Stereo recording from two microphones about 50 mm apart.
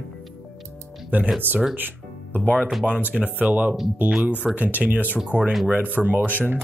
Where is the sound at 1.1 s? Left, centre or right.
Right.